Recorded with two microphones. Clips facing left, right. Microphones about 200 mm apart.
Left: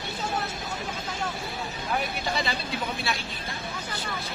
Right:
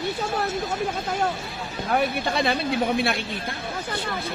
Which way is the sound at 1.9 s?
55° right (ahead or behind).